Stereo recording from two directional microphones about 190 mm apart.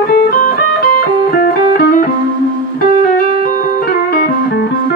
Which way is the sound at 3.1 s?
50° left (ahead or behind).